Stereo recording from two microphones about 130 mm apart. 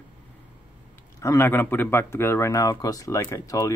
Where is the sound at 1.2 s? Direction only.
20° left (ahead or behind).